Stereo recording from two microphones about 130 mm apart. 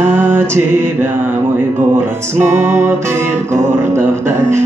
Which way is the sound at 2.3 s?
20° right (ahead or behind).